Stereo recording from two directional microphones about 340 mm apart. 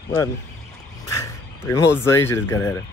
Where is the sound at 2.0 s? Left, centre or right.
Centre.